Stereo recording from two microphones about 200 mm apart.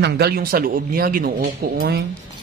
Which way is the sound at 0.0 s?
55° right (ahead or behind).